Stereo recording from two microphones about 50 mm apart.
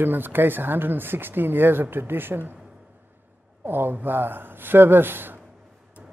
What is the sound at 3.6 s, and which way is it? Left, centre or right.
Speech, right.